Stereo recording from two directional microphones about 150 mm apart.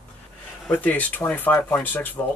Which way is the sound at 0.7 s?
10° left (ahead or behind).